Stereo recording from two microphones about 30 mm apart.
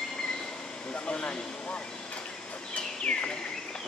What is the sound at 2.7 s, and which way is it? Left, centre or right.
Bird, left.